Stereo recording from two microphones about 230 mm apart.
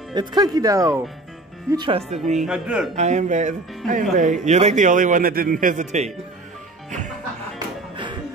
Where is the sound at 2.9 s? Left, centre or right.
Right.